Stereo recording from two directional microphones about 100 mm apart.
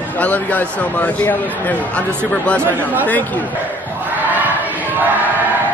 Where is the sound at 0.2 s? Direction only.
15° left (ahead or behind).